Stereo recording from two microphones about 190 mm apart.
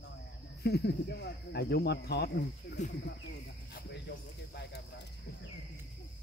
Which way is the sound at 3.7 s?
60° left (ahead or behind).